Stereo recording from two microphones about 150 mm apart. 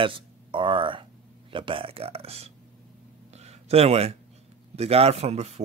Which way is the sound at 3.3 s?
45° right (ahead or behind).